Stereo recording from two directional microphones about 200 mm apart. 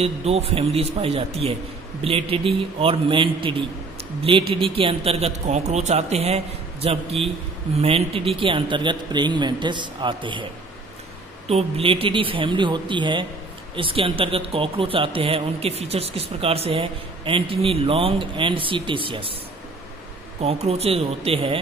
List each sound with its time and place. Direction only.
0.0 s a man's voice: 30° right (ahead or behind)
11.4 s speech: 30° right (ahead or behind)
20.3 s speech: 30° right (ahead or behind)